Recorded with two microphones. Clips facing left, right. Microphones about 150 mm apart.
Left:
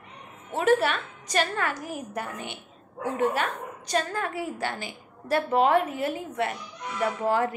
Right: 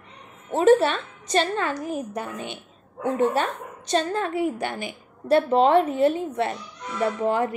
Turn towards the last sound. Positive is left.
turn(degrees=-20)  # may be behind; listen again after turning